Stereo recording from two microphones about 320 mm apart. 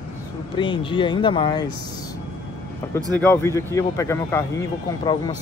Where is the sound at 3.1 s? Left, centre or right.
Centre.